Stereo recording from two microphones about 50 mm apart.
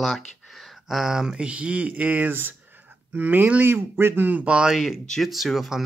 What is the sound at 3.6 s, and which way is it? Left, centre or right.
Speech, right.